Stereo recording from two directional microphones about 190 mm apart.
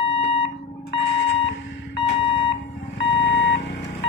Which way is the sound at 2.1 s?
25° left (ahead or behind).